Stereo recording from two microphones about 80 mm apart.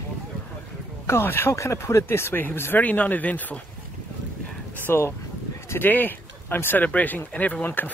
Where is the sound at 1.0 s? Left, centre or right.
Left.